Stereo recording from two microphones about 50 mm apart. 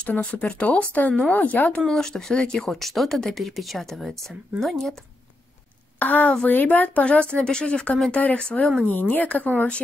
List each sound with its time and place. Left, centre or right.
0.0 s speech: left
1.9 s speech: centre
5.9 s a woman's voice: left
8.9 s speech: left